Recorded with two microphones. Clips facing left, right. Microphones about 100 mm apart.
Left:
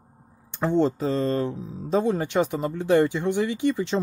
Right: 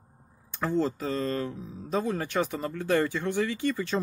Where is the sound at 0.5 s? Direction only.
25° left (ahead or behind).